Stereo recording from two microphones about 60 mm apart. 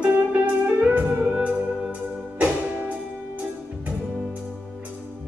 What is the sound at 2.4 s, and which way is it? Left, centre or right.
Music, right.